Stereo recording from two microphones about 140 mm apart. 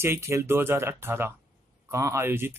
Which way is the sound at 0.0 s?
20° right (ahead or behind).